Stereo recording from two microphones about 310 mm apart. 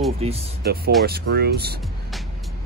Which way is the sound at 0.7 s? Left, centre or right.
Right.